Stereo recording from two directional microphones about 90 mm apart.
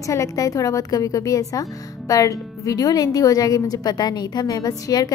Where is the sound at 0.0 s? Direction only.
40° left (ahead or behind).